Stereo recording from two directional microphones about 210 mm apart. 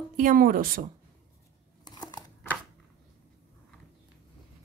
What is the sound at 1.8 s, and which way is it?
Crumpling, 20° left (ahead or behind).